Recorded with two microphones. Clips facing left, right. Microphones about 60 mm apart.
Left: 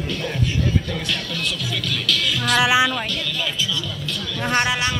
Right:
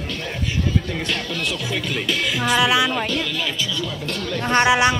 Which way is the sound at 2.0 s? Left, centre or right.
Right.